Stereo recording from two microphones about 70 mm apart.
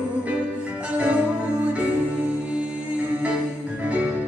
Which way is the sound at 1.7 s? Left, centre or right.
Centre.